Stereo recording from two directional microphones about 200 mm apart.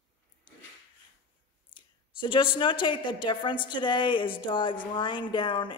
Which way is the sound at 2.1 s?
25° left (ahead or behind).